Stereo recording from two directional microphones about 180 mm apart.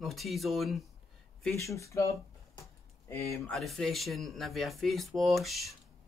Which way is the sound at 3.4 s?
Centre (ahead or behind).